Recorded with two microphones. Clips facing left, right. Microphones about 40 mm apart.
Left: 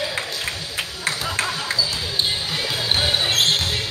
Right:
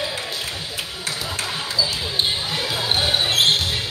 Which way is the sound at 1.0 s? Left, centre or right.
Left.